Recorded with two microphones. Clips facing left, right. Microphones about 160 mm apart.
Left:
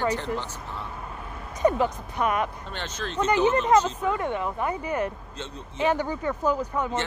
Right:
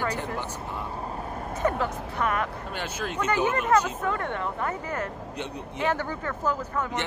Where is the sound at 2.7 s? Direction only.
10° right (ahead or behind).